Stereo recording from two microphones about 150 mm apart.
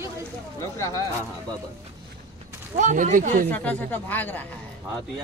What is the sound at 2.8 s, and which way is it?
Speech, 55° right (ahead or behind).